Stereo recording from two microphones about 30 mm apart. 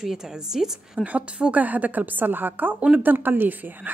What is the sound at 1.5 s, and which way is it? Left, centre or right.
Speech, right.